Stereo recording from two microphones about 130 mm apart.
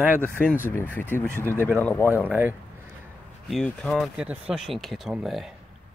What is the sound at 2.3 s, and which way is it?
Speech, 15° right (ahead or behind).